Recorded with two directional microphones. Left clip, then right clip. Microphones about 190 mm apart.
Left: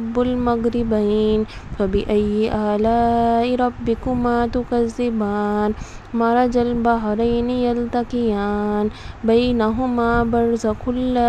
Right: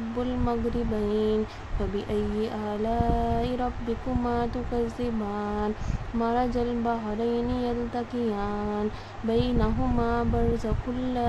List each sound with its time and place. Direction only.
1.0 s speech: 35° left (ahead or behind)